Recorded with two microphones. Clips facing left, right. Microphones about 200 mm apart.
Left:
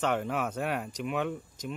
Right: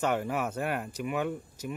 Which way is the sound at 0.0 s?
5° right (ahead or behind).